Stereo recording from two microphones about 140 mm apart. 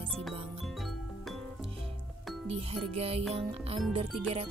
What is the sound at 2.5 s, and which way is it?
Music, 45° right (ahead or behind).